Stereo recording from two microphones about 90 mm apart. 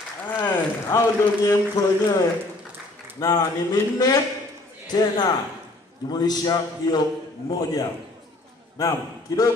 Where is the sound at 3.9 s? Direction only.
50° left (ahead or behind).